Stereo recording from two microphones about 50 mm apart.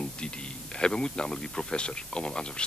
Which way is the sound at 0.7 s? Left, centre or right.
Centre.